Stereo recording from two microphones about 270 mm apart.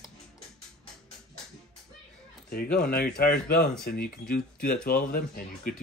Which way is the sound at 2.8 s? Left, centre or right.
Left.